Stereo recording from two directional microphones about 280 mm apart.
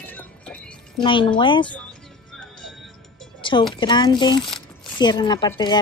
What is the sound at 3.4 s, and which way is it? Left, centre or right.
Speech, centre.